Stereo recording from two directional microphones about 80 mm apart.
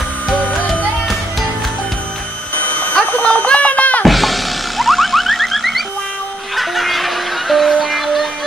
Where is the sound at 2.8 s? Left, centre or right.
Centre.